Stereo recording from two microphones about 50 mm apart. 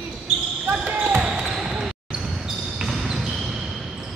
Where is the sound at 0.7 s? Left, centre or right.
Right.